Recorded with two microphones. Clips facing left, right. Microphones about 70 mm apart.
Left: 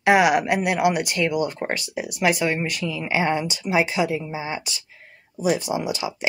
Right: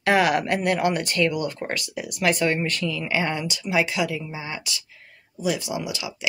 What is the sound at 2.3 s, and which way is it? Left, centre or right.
Speech, centre.